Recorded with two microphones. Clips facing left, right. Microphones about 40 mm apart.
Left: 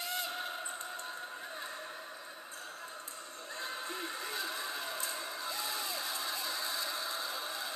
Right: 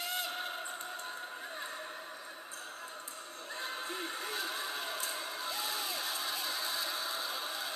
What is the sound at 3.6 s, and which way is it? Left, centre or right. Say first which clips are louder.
Music: right 1 dB; centre.